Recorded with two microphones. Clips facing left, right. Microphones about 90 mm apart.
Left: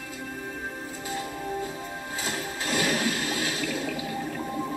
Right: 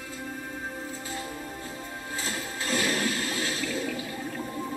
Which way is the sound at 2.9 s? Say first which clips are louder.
Left 1 dB; 15° left (ahead or behind).